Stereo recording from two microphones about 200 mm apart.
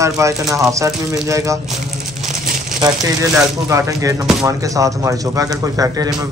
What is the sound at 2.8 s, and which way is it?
Speech, 20° right (ahead or behind).